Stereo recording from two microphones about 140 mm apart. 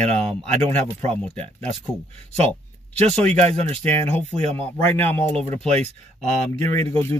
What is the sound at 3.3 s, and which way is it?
Speech, 50° right (ahead or behind).